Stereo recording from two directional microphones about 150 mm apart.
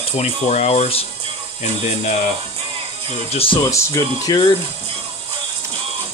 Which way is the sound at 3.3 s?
40° left (ahead or behind).